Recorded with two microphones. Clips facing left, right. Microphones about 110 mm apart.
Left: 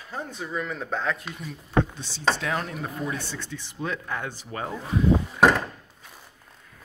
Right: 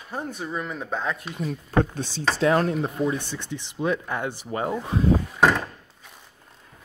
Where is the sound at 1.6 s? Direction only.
45° right (ahead or behind).